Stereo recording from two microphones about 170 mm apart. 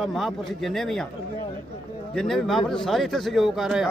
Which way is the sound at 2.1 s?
Centre (ahead or behind).